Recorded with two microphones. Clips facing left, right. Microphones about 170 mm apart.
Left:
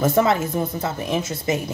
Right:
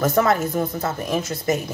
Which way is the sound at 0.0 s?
25° left (ahead or behind).